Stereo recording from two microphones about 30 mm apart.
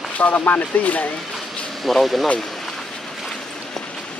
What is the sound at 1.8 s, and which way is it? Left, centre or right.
Speech, centre.